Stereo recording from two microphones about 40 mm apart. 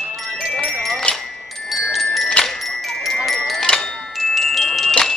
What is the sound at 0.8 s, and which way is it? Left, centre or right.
Music, centre.